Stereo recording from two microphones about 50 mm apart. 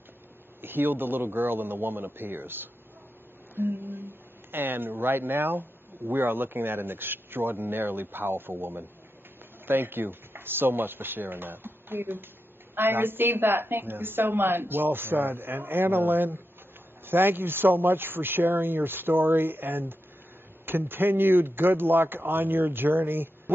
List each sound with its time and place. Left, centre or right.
0.6 s speech: right
3.5 s a sound: right
4.5 s speech: right